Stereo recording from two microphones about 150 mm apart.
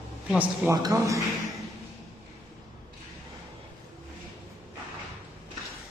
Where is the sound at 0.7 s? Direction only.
20° right (ahead or behind).